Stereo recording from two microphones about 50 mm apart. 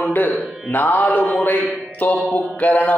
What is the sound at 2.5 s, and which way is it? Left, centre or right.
Speech, left.